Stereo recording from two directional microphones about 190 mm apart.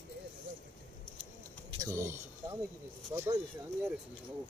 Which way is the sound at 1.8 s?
15° right (ahead or behind).